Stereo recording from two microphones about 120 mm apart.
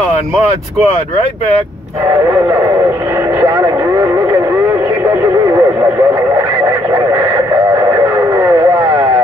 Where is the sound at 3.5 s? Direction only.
25° right (ahead or behind).